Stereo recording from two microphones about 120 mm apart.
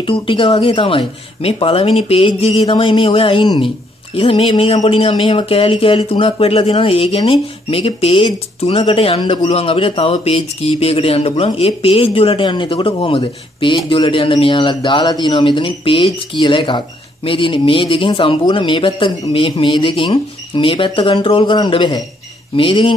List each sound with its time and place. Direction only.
0.0 s speech: 45° left (ahead or behind)
2.6 s speech: 45° left (ahead or behind)
9.4 s speech: 55° left (ahead or behind)